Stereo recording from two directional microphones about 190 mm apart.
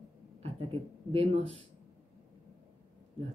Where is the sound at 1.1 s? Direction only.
30° right (ahead or behind).